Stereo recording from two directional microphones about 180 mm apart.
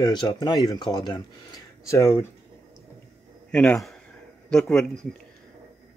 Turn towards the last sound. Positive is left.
turn(degrees=5)  # may be behind; listen again after turning